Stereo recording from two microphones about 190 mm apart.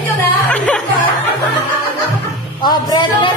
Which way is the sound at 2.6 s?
25° left (ahead or behind).